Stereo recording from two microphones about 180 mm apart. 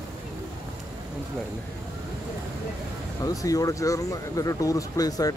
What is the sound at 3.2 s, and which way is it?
Speech, 20° left (ahead or behind).